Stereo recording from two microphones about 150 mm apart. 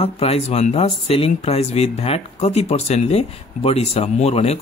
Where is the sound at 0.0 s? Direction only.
40° left (ahead or behind).